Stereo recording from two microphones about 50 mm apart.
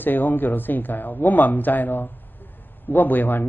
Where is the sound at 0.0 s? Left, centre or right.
Left.